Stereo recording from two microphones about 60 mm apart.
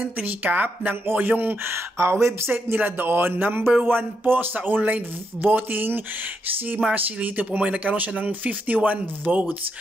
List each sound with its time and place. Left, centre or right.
0.0 s speech: right
1.7 s speech: right
6.8 s speech: right